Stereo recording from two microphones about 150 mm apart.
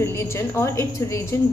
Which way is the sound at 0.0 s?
15° left (ahead or behind).